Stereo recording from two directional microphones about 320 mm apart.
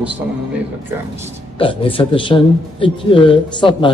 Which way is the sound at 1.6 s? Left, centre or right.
Centre.